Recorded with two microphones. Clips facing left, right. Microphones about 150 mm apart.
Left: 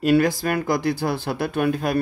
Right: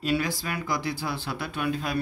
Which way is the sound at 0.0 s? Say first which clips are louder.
Left 9 dB; 50° left (ahead or behind).